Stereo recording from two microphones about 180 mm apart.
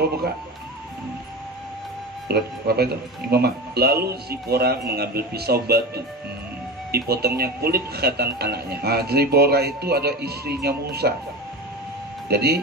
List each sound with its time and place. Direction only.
2.2 s speech: 65° right (ahead or behind)
6.9 s speech: 60° right (ahead or behind)
12.3 s speech: 60° right (ahead or behind)